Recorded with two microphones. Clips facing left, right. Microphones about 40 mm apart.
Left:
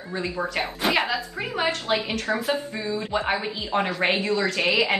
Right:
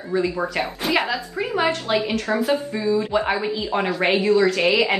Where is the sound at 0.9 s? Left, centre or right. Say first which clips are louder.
Right 2 dB; centre.